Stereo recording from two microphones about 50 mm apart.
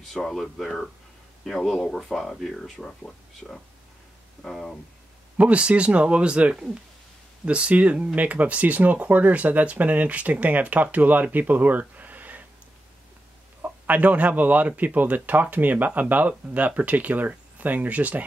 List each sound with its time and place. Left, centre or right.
0.0 s speech: centre
5.4 s speech: right
13.6 s a man's voice: right